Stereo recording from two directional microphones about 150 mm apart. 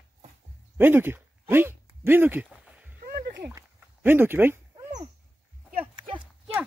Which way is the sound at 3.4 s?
15° right (ahead or behind).